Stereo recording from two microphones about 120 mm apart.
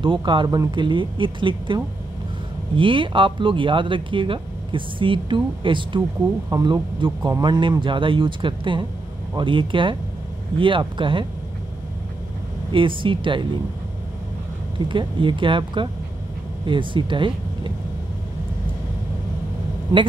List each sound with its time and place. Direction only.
0.0 s speech: 40° right (ahead or behind)
12.7 s speech: 45° right (ahead or behind)
14.9 s speech: 45° right (ahead or behind)
19.9 s a man's voice: 35° right (ahead or behind)